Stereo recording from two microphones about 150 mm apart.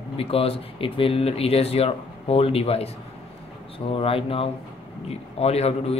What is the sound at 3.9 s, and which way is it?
Speech, 40° left (ahead or behind).